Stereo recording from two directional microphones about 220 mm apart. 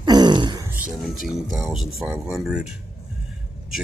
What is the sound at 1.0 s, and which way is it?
Speech, centre (ahead or behind).